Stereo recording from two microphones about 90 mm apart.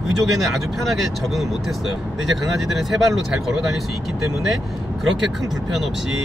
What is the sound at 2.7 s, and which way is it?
Speech, centre (ahead or behind).